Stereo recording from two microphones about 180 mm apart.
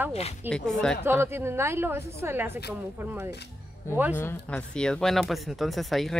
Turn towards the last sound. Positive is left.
turn(degrees=0)  # may be behind; listen again after turning